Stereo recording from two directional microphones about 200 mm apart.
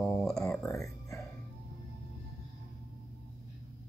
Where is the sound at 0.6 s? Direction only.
15° left (ahead or behind).